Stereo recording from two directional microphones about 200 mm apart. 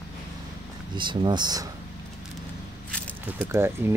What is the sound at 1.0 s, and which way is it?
Speech, 25° right (ahead or behind).